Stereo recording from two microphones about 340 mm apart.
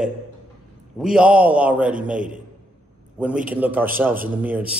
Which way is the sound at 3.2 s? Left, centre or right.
Centre.